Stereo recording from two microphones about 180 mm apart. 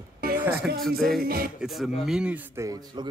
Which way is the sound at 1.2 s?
55° right (ahead or behind).